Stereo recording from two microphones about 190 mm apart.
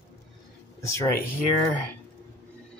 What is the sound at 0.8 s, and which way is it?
Speech, 15° left (ahead or behind).